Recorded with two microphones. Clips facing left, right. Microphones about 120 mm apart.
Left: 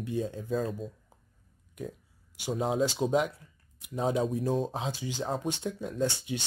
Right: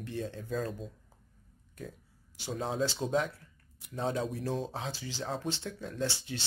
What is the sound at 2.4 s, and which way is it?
Speech, 15° left (ahead or behind).